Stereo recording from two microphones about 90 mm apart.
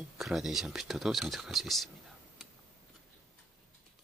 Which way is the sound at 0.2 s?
5° right (ahead or behind).